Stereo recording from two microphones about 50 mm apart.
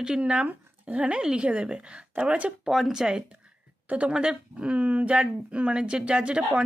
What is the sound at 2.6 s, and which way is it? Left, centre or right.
Speech, centre.